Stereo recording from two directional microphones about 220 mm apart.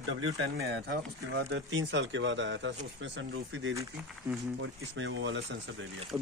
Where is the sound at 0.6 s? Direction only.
45° right (ahead or behind).